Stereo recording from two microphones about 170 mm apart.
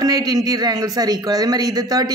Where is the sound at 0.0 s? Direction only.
20° right (ahead or behind).